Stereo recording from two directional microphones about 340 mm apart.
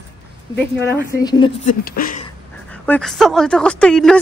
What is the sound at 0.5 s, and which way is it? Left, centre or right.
A woman's voice, centre.